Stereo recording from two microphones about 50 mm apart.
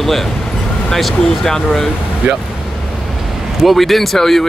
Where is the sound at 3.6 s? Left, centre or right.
Centre.